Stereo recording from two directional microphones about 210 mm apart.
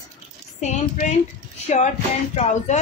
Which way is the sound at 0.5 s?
35° left (ahead or behind).